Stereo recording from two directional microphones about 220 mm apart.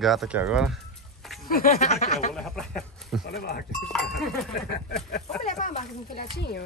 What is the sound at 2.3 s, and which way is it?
Speech, centre (ahead or behind).